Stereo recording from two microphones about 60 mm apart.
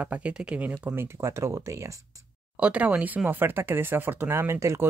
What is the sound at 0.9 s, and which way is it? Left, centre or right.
Speech, right.